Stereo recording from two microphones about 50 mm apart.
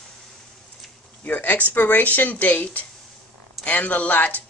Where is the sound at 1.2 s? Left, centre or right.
Left.